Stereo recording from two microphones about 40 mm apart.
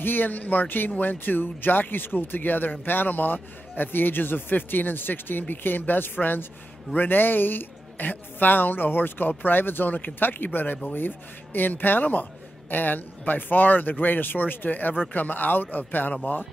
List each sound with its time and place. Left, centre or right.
0.0 s speech: left